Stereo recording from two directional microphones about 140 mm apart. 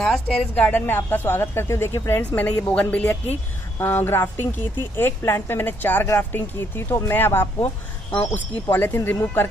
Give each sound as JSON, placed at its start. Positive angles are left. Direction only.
{"t": 0.0, "sound": "a woman's voice", "side_deg": 5}